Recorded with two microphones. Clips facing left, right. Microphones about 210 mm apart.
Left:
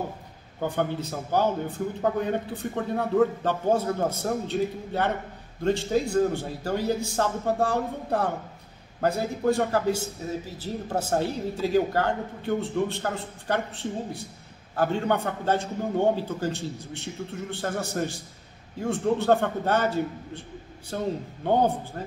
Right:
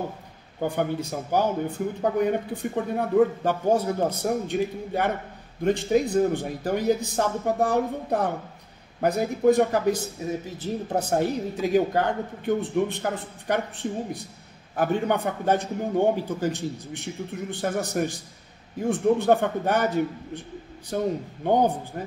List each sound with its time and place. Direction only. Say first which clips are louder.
0.6 s a man's voice: right 2 dB; 15° right (ahead or behind)